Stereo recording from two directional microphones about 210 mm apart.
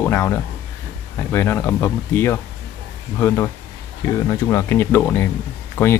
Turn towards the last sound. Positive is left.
turn(degrees=10)  # may be behind; listen again after turning